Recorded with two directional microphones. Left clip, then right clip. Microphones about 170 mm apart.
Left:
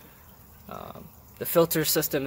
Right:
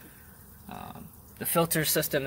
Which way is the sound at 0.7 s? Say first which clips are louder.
Left 3 dB; 25° left (ahead or behind).